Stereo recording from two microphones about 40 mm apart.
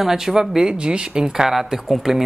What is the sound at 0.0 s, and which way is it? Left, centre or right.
Speech, centre.